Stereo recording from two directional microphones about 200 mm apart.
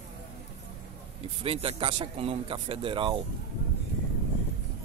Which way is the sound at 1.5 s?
30° right (ahead or behind).